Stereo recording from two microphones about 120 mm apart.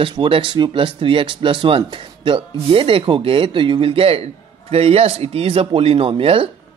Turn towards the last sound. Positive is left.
turn(degrees=-50)  # may be behind; listen again after turning